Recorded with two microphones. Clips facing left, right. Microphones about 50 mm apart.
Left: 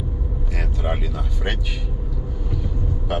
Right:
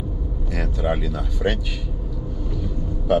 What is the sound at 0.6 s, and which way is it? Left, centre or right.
Speech, centre.